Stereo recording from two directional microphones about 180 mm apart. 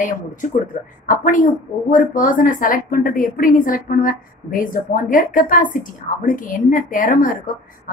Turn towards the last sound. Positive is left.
turn(degrees=50)  # may be behind; listen again after turning